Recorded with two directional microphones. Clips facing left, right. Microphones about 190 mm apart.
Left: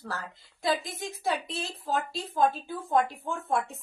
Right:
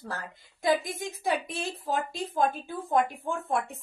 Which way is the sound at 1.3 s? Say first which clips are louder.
Right 1 dB; 15° right (ahead or behind).